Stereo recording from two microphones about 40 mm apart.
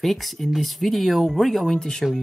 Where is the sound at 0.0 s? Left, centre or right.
Centre.